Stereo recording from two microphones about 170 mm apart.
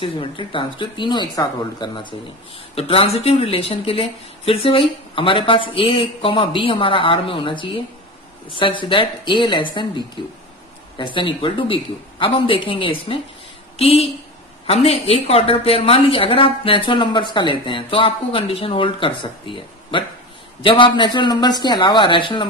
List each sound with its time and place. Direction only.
0.0 s a woman's voice: 30° left (ahead or behind)